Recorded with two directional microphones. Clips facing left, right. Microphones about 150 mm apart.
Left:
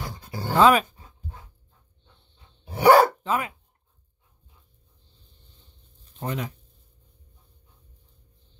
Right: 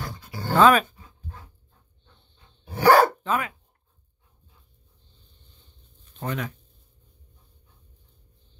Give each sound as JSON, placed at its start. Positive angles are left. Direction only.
{"t": 0.4, "sound": "dog", "side_deg": 20}
{"t": 2.3, "sound": "dog", "side_deg": 20}
{"t": 6.1, "sound": "speech", "side_deg": 20}